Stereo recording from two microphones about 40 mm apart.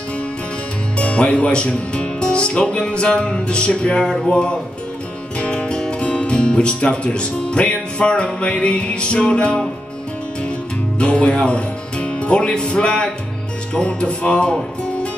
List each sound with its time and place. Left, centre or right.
0.9 s speech: left
2.2 s music: left
4.0 s speech: centre
11.0 s speech: left
13.7 s music: left